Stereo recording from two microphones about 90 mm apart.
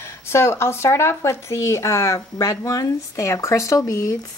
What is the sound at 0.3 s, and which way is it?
Speech, 30° left (ahead or behind).